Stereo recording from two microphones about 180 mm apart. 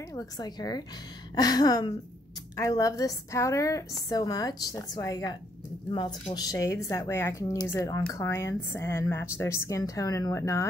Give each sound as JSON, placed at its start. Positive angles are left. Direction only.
{"t": 0.1, "sound": "a woman's voice", "side_deg": 20}